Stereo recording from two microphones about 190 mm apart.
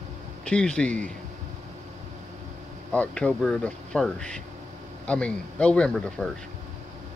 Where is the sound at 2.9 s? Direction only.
5° left (ahead or behind).